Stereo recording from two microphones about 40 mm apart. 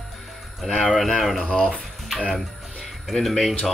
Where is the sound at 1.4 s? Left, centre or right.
Left.